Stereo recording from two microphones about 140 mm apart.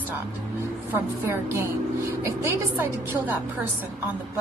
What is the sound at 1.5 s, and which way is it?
A woman's voice, 20° right (ahead or behind).